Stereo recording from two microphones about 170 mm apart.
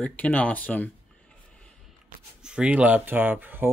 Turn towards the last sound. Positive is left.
turn(degrees=-10)  # may be behind; listen again after turning